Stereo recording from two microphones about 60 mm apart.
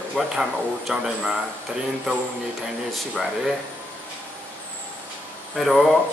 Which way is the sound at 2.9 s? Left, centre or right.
Centre.